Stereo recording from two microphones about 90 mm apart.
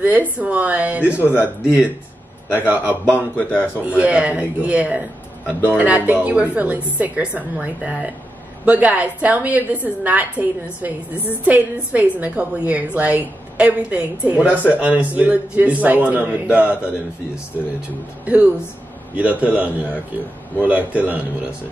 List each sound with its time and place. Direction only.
0.4 s a woman's voice: 15° right (ahead or behind)
18.2 s a woman's voice: 15° right (ahead or behind)